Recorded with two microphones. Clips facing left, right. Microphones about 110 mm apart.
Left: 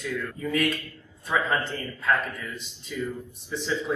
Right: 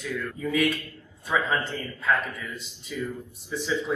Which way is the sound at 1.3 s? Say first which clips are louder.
Even; 15° right (ahead or behind).